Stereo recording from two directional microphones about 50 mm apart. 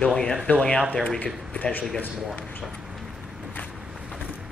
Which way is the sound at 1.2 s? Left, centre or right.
Left.